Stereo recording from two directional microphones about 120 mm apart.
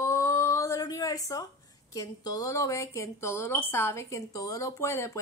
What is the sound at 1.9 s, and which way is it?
A woman's voice, 30° left (ahead or behind).